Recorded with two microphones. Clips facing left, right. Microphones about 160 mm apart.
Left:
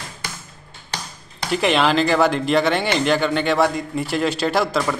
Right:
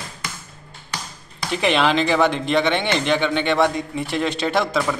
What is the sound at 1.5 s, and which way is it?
Speech, centre (ahead or behind).